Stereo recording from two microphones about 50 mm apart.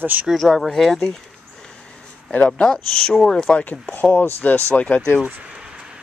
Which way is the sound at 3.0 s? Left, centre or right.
Centre.